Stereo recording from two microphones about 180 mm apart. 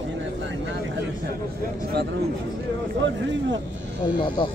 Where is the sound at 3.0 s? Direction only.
90° right.